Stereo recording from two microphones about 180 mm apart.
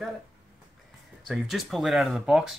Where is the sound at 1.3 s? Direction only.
Centre (ahead or behind).